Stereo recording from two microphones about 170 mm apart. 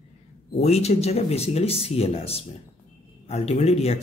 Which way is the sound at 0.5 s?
40° left (ahead or behind).